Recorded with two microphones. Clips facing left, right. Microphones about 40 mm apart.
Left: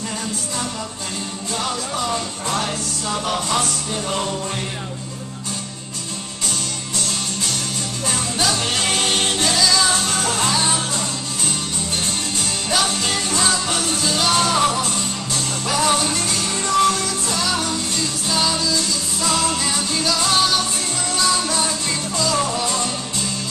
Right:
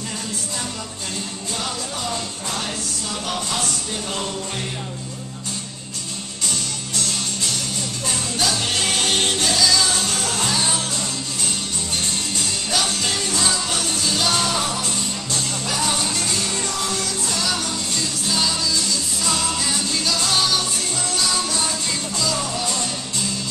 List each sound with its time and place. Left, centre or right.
3.3 s speech: centre
8.1 s music: centre
12.7 s music: centre